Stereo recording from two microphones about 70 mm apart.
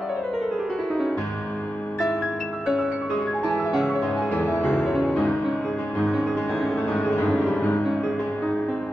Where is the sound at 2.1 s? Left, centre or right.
Centre.